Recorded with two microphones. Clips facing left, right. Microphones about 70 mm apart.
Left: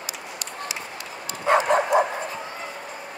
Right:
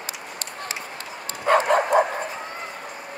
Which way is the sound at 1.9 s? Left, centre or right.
Right.